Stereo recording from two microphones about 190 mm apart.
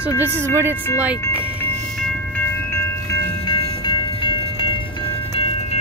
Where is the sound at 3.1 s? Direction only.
25° left (ahead or behind).